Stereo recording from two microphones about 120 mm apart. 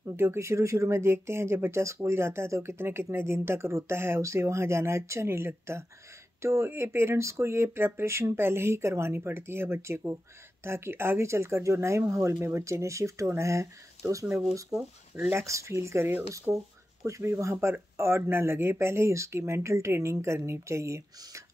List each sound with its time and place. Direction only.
0.0 s speech: 20° right (ahead or behind)